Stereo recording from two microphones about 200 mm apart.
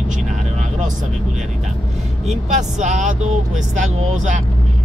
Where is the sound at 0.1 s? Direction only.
35° right (ahead or behind).